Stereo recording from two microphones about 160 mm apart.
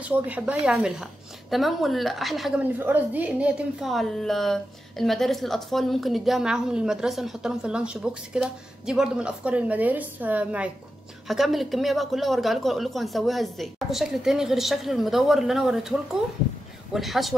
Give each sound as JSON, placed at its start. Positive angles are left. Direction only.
{"t": 0.0, "sound": "a woman's voice", "side_deg": -10}
{"t": 16.9, "sound": "a woman's voice", "side_deg": 0}